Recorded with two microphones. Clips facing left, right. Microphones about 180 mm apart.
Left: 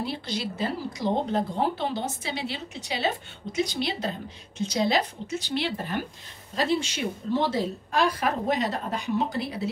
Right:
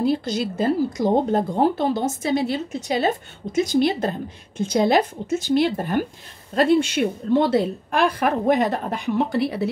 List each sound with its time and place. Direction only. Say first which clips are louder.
0.0 s a woman's voice: right 9 dB; 45° right (ahead or behind); by 9.7 s 65° right (ahead or behind)